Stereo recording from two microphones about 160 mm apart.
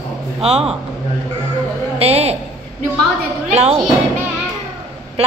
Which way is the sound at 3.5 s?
40° right (ahead or behind).